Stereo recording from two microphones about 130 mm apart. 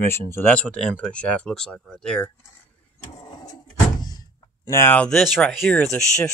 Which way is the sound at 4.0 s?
30° left (ahead or behind).